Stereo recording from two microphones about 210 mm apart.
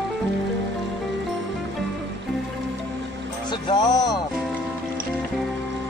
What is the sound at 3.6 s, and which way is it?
Music, 20° left (ahead or behind).